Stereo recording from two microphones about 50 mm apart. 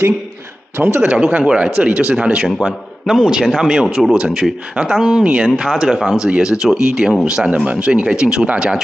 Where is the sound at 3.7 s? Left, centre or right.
Centre.